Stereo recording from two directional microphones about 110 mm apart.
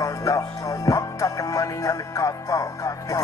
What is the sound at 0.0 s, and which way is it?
Music, 30° left (ahead or behind).